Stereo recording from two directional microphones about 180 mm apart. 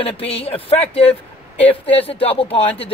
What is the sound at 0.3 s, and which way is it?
Speech, 35° left (ahead or behind).